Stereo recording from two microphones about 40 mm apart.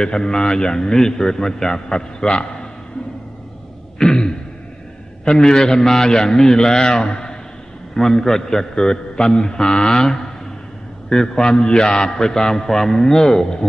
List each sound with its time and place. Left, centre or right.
0.0 s a man's voice: centre
4.0 s a sound: centre
5.3 s a man's voice: centre